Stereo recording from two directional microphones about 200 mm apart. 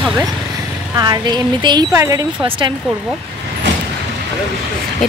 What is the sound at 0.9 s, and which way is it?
Speech, 20° right (ahead or behind).